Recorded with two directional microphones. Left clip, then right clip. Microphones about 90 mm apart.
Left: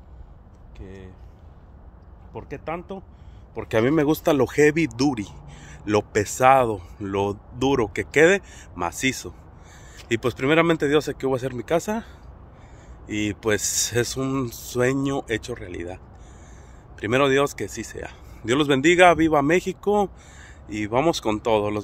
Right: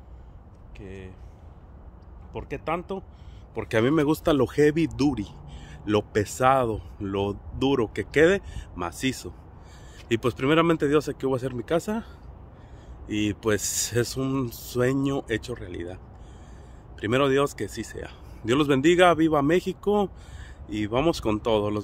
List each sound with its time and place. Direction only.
0.7 s speech: centre (ahead or behind)
2.3 s speech: 35° right (ahead or behind)
2.6 s speech: 65° right (ahead or behind)
3.6 s speech: 5° left (ahead or behind)
4.2 s speech: 10° right (ahead or behind)
13.0 s speech: 20° right (ahead or behind)